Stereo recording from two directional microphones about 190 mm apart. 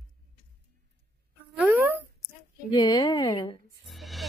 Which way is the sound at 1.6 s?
10° right (ahead or behind).